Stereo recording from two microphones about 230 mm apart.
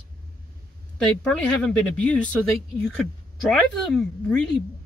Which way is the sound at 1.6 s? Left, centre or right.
Centre.